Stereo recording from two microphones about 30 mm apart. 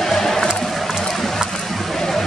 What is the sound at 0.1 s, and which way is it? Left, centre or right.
Sheep, centre.